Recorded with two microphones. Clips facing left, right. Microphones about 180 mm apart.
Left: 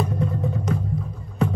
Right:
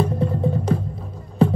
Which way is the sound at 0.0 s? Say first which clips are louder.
Right 4 dB; 30° right (ahead or behind).